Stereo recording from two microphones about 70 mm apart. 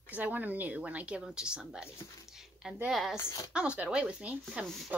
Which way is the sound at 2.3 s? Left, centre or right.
Centre.